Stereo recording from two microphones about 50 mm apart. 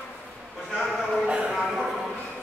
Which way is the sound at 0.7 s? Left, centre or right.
Centre.